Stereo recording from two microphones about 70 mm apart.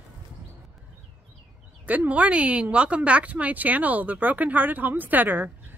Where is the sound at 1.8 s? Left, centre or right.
Right.